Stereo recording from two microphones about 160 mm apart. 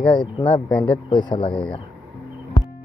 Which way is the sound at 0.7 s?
10° left (ahead or behind).